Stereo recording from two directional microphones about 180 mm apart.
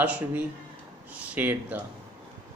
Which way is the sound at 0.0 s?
10° right (ahead or behind).